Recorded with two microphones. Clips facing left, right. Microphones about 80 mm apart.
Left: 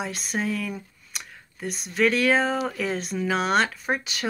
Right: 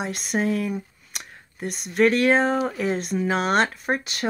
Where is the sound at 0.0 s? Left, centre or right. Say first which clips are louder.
Right 2 dB; right.